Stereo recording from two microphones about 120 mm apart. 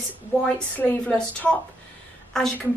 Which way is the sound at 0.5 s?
15° left (ahead or behind).